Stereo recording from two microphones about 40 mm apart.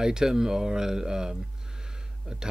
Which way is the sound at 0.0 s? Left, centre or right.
Centre.